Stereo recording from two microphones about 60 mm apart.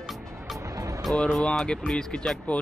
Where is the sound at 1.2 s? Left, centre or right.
Centre.